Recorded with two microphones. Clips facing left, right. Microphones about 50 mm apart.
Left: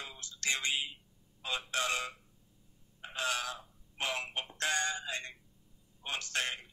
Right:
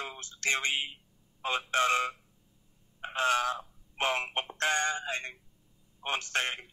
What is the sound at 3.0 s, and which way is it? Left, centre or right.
Crow, right.